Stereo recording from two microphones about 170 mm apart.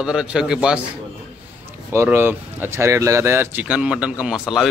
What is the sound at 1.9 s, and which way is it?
A man's voice, 15° right (ahead or behind).